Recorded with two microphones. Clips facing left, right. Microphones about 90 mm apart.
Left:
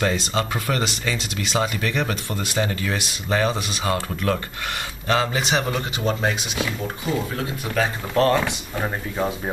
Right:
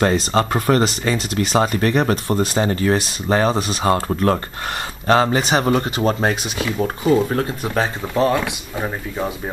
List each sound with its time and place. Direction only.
0.0 s speech: 45° right (ahead or behind)
7.6 s speech: 30° right (ahead or behind)
8.1 s speech: 10° right (ahead or behind)